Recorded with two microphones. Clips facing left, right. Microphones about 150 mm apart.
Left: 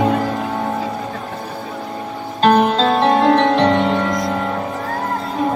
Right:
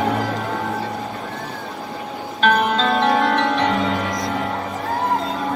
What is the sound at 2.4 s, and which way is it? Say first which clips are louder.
Music: left 5 dB; 35° left (ahead or behind).